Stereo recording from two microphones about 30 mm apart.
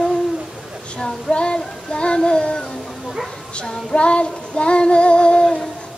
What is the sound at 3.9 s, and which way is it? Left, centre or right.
Female singing, left.